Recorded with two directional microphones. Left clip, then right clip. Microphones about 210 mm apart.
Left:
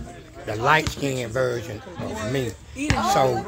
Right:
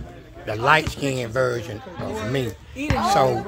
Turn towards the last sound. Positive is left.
turn(degrees=-5)  # may be behind; listen again after turning